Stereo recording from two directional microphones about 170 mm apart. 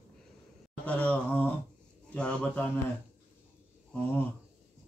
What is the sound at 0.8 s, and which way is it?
A man's voice, 10° left (ahead or behind).